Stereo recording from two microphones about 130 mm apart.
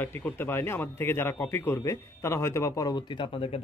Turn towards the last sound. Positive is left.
turn(degrees=45)  # may be behind; listen again after turning